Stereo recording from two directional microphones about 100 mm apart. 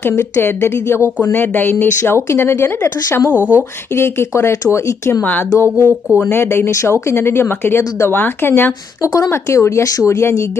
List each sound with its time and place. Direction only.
0.0 s speech: 25° left (ahead or behind)
3.3 s speech: 15° right (ahead or behind)
3.9 s speech: 25° left (ahead or behind)
5.2 s a woman's voice: 15° left (ahead or behind)
5.6 s speech: 25° right (ahead or behind)
6.3 s speech: 25° left (ahead or behind)
9.0 s speech: 35° left (ahead or behind)